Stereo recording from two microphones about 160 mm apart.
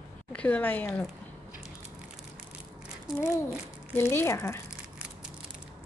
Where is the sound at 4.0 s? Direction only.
15° left (ahead or behind).